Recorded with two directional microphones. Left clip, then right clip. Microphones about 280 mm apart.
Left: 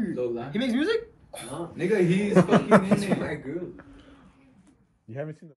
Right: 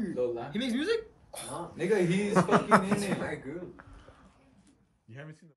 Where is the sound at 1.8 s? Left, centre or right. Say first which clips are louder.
Left 4 dB; right.